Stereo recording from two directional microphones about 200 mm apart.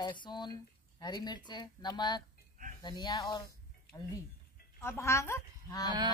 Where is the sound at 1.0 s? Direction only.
20° left (ahead or behind).